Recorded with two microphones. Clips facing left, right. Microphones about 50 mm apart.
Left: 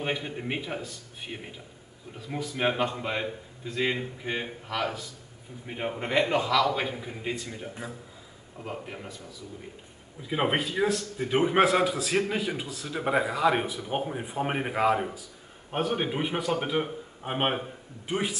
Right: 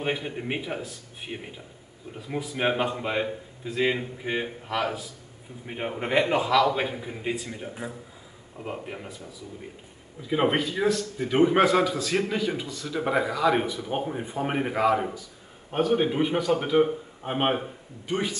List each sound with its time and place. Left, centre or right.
0.0 s a man's voice: centre
10.2 s a man's voice: centre
13.6 s a man's voice: centre